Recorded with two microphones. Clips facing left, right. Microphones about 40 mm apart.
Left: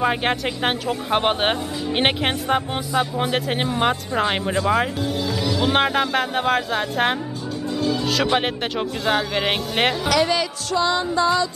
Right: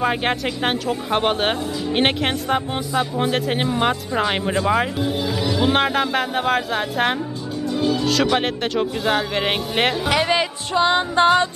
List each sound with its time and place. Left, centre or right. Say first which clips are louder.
0.0 s speech: even; centre
5.0 s speech: right 1 dB; centre
5.6 s speech: right 1 dB; centre
7.7 s music: right 2 dB; centre
8.0 s music: right 2 dB; centre
8.4 s speech: right 2 dB; centre
10.0 s music: right 1 dB; right